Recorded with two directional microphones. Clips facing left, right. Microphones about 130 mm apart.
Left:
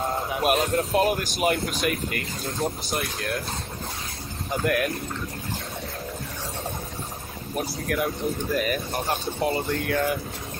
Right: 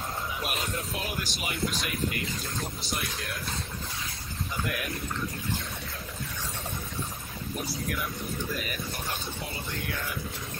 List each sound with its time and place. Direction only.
0.3 s speech: 55° left (ahead or behind)
4.5 s speech: 55° left (ahead or behind)
7.9 s speech: 55° left (ahead or behind)